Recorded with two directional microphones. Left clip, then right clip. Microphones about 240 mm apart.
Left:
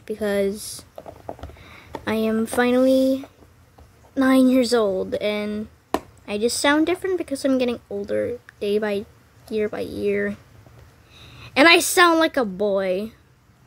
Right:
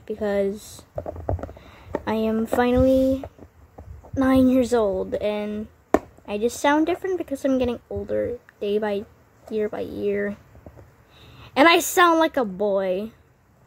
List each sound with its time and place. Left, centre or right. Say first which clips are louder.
0.0 s a woman's voice: left 1 dB; centre
1.0 s a sound: right 6 dB; right
2.0 s a woman's voice: left 1 dB; centre